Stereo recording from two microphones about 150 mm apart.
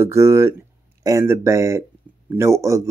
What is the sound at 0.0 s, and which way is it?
Speech, 20° right (ahead or behind).